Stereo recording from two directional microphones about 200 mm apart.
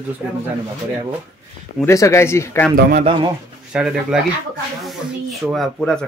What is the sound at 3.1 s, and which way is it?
Speech, 25° right (ahead or behind).